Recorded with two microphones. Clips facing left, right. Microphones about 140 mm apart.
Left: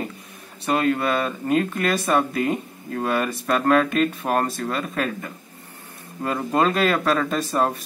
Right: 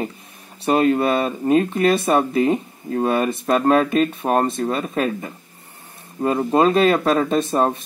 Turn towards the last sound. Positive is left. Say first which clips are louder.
# right 4 dB
turn(degrees=-25)  # may be behind; listen again after turning